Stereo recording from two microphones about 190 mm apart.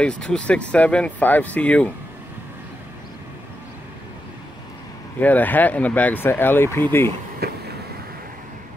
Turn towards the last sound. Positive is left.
turn(degrees=-55)  # may be behind; listen again after turning